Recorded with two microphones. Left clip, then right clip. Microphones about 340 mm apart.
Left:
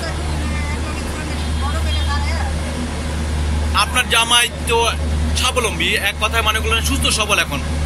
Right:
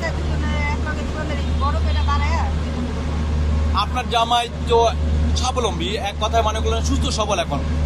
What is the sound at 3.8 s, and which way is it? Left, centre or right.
Speech, centre.